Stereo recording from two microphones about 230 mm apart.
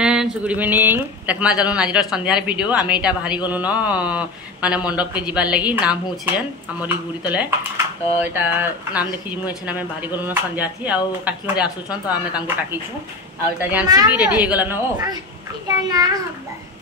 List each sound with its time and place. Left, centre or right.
0.0 s speech: centre
13.6 s speech: centre